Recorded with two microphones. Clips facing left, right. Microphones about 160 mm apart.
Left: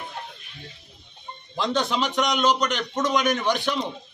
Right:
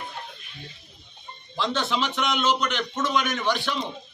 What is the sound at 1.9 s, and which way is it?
A man's voice, 45° left (ahead or behind).